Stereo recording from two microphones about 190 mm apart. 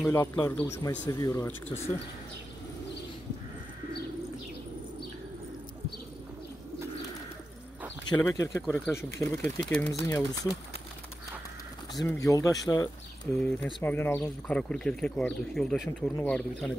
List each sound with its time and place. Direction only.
0.1 s speech: 15° left (ahead or behind)
8.2 s speech: 15° left (ahead or behind)
11.9 s speech: 20° left (ahead or behind)
13.4 s speech: 5° left (ahead or behind)